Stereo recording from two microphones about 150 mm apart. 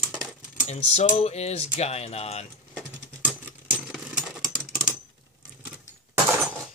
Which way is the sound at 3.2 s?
5° right (ahead or behind).